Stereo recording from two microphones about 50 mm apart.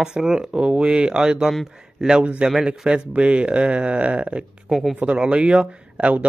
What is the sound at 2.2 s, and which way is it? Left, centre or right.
A man's voice, right.